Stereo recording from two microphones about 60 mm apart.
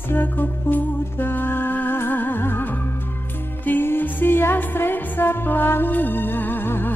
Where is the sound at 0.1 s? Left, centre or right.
Left.